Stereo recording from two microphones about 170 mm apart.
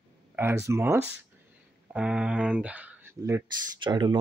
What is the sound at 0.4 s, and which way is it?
Speech, 15° right (ahead or behind).